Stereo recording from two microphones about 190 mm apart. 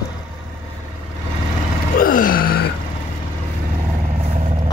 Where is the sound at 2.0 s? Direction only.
45° left (ahead or behind).